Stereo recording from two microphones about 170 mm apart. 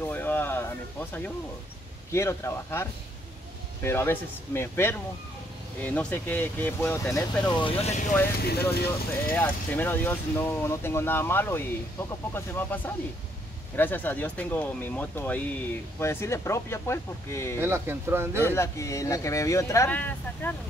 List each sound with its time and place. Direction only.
0.1 s a sound: 10° left (ahead or behind)
2.1 s speech: 15° left (ahead or behind)
7.8 s speech: 40° left (ahead or behind)
8.4 s speech: 70° left (ahead or behind)
9.3 s speech: 10° left (ahead or behind)
17.6 s speech: 15° right (ahead or behind)
18.4 s speech: 15° left (ahead or behind)